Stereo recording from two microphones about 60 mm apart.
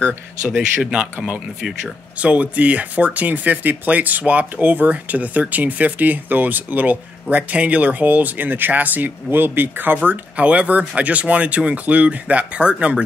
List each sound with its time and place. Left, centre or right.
0.6 s speech: centre; by 9.9 s right
10.0 s speech: right